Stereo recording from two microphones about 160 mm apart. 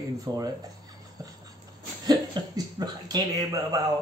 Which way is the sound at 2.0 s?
25° right (ahead or behind).